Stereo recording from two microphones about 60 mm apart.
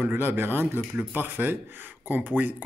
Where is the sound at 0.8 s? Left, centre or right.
Right.